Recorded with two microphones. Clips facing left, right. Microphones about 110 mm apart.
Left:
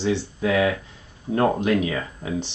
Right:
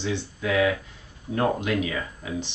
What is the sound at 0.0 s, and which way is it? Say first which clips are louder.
Speech: left 5 dB; 35° left (ahead or behind).